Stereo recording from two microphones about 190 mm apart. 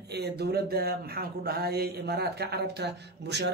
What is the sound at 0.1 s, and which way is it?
Speech, 60° right (ahead or behind).